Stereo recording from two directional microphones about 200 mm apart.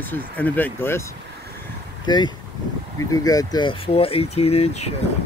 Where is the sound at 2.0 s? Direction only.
20° left (ahead or behind).